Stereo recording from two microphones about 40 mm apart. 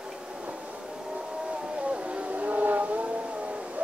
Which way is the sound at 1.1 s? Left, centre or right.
Right.